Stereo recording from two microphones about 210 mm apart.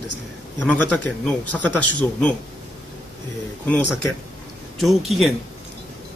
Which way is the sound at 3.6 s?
Centre (ahead or behind).